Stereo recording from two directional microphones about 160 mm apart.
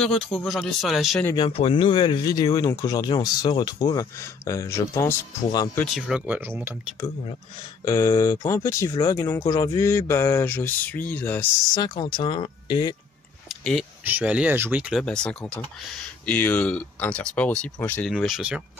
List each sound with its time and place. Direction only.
0.0 s speech: centre (ahead or behind)
1.3 s speech: 35° left (ahead or behind)
5.9 s speech: 5° right (ahead or behind)
7.8 s speech: 20° left (ahead or behind)
11.7 s speech: 25° left (ahead or behind)
13.5 s a sound: centre (ahead or behind)
14.0 s speech: 10° right (ahead or behind)
15.0 s speech: 5° left (ahead or behind)
18.1 s speech: centre (ahead or behind)